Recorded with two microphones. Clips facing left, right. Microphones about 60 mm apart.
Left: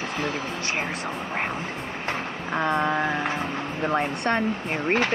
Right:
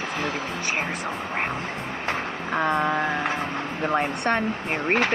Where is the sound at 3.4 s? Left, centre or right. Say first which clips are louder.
Even; centre.